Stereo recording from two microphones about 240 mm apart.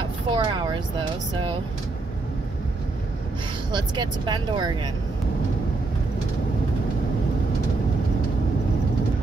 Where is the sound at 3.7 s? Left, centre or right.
Centre.